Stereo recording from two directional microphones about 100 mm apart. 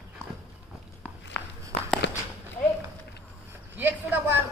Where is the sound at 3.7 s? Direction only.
20° right (ahead or behind).